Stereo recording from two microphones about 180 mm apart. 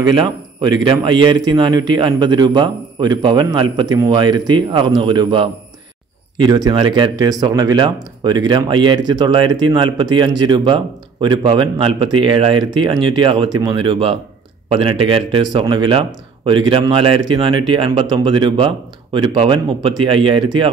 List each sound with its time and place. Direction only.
0.1 s speech: 25° right (ahead or behind)